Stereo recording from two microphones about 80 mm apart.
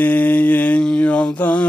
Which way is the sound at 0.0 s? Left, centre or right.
Left.